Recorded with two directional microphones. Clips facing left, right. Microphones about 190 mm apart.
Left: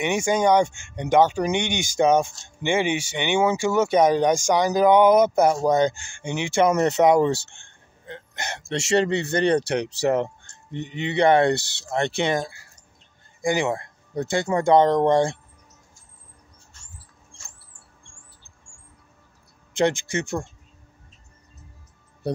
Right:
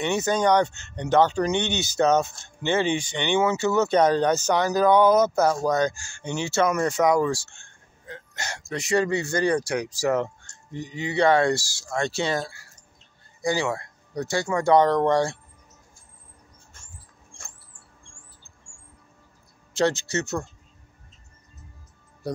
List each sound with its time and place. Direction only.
0.0 s speech: 15° left (ahead or behind)
7.5 s a sound: 20° left (ahead or behind)
9.1 s speech: 60° left (ahead or behind)
10.0 s speech: 20° left (ahead or behind)
11.5 s speech: 65° left (ahead or behind)
11.8 s speech: 20° left (ahead or behind)
16.7 s mouse: 50° right (ahead or behind)
19.8 s speech: 15° left (ahead or behind)